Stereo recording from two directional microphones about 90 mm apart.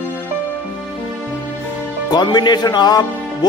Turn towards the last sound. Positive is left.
turn(degrees=50)  # may be behind; listen again after turning